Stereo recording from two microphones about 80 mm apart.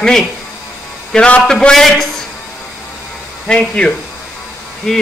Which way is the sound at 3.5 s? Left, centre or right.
Centre.